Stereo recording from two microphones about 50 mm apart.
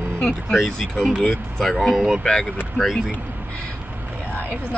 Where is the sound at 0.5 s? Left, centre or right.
Centre.